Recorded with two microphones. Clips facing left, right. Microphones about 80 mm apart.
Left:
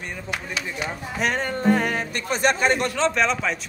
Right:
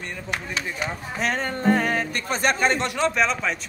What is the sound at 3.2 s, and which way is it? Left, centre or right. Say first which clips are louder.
Speech: left 1 dB; centre.